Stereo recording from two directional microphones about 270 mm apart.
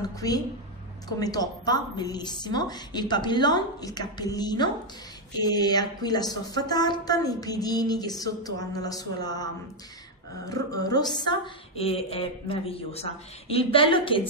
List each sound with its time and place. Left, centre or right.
0.0 s a woman's voice: centre
10.5 s a woman's voice: centre